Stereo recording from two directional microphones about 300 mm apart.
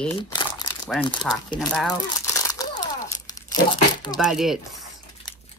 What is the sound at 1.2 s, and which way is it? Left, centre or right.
Speech, centre.